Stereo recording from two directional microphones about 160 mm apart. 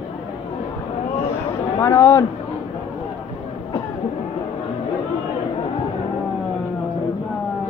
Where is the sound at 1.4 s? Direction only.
20° left (ahead or behind).